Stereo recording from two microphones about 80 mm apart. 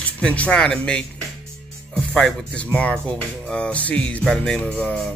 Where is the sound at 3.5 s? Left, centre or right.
Centre.